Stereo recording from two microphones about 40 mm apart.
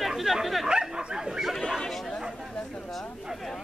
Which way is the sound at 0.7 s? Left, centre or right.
Right.